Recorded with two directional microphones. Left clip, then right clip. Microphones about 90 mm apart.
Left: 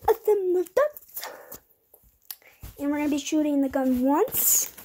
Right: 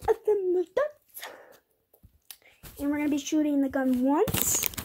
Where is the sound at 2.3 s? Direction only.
10° left (ahead or behind).